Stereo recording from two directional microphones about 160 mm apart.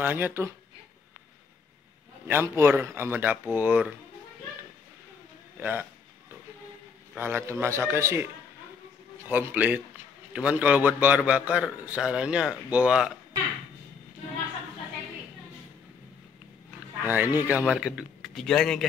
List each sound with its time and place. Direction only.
0.0 s a man's voice: 10° right (ahead or behind)
2.2 s a man's voice: 15° right (ahead or behind)
5.6 s a man's voice: 10° right (ahead or behind)
7.2 s a man's voice: 15° right (ahead or behind)
17.0 s a man's voice: 10° right (ahead or behind); by 18.9 s 5° left (ahead or behind)